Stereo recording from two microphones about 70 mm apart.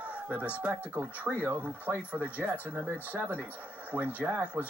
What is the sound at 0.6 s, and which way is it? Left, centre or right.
Speech, right.